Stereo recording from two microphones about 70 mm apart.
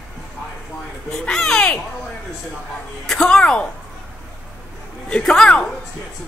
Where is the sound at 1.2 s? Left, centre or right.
Centre.